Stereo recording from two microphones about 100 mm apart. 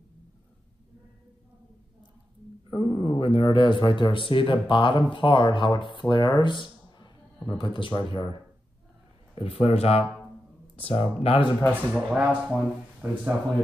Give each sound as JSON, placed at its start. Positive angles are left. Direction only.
{"t": 2.7, "sound": "speech", "side_deg": 60}
{"t": 9.3, "sound": "speech", "side_deg": 75}
{"t": 10.8, "sound": "speech", "side_deg": 70}
{"t": 11.9, "sound": "speech", "side_deg": -15}